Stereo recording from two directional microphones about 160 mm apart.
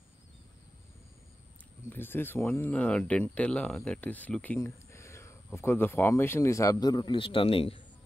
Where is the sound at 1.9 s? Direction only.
15° left (ahead or behind); by 7.8 s 35° left (ahead or behind).